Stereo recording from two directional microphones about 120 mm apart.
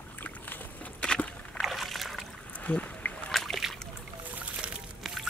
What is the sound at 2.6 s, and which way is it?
Rowboat, 10° left (ahead or behind).